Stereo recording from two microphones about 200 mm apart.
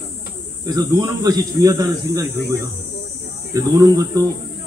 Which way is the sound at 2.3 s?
55° left (ahead or behind).